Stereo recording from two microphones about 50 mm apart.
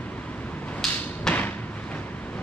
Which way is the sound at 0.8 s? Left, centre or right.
Centre.